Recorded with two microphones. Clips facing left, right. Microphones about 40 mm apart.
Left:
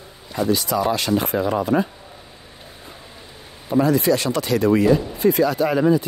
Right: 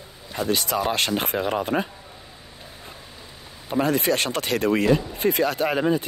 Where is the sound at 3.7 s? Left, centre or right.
Right.